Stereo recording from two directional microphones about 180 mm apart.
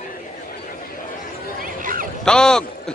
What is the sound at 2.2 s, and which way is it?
Speech, 5° left (ahead or behind).